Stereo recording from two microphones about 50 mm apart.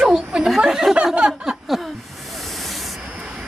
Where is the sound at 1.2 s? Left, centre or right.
Centre.